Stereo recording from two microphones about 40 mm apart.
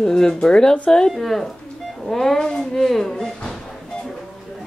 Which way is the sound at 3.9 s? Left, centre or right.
Centre.